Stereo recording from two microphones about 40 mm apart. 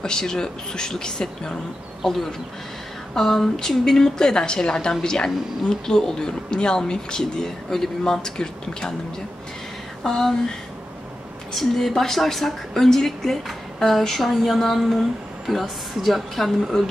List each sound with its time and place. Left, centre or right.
0.0 s speech: centre
10.0 s speech: centre
11.5 s a woman's voice: centre